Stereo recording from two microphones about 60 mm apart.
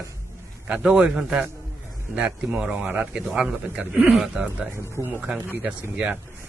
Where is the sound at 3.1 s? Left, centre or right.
Centre.